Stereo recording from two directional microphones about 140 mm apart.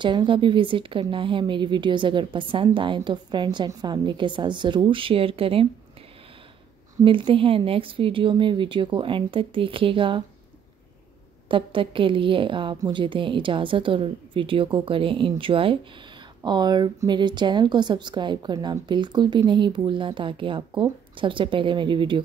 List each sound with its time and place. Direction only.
0.0 s speech: 35° right (ahead or behind)
7.1 s speech: 35° right (ahead or behind)
11.4 s speech: 40° right (ahead or behind)